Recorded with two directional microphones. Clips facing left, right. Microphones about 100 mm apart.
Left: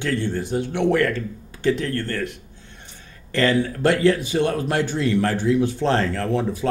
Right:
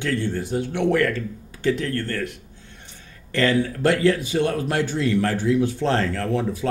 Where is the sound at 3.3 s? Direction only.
30° left (ahead or behind).